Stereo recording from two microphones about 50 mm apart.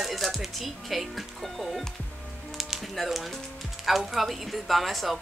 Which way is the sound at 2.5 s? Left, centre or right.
Centre.